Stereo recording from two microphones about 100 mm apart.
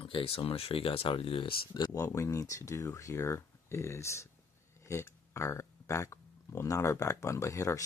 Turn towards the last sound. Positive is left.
turn(degrees=35)  # may be behind; listen again after turning